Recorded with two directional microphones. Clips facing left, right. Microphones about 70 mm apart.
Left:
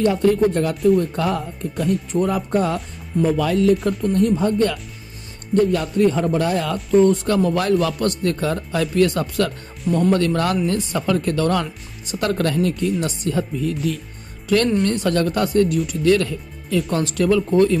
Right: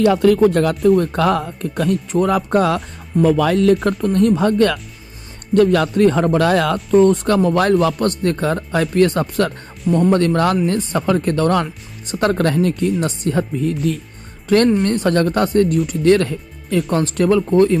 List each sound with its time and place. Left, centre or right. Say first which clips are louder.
0.0 s speech: right 4 dB; right